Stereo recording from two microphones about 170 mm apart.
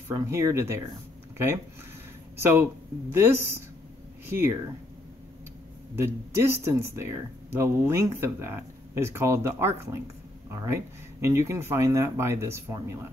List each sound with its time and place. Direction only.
0.1 s speech: 15° right (ahead or behind)
2.4 s speech: 15° right (ahead or behind)
5.9 s speech: 15° right (ahead or behind)